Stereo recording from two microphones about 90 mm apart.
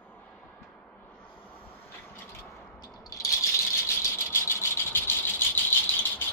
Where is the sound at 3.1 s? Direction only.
40° left (ahead or behind).